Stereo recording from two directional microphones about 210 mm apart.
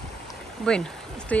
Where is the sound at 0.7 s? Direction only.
5° left (ahead or behind).